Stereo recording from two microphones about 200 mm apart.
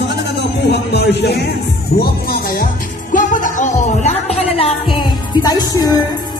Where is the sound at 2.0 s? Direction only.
45° left (ahead or behind).